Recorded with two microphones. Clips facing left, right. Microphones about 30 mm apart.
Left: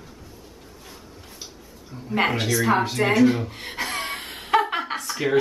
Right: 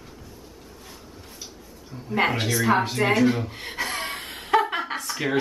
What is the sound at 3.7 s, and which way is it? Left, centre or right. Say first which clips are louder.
Chuckle: left 1 dB; centre.